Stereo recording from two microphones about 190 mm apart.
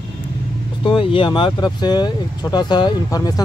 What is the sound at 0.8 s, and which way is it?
Speech, 25° left (ahead or behind).